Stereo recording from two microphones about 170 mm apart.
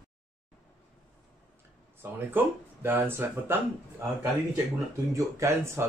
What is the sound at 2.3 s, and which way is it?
Speech, 10° right (ahead or behind).